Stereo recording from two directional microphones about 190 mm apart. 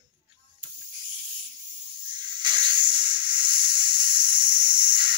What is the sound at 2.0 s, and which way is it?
Snake, 25° right (ahead or behind).